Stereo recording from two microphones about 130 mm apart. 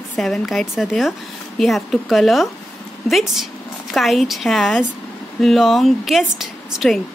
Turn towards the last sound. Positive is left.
turn(degrees=0)  # may be behind; listen again after turning